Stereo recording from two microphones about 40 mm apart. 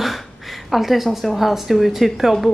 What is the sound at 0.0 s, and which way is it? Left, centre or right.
A woman's voice, centre.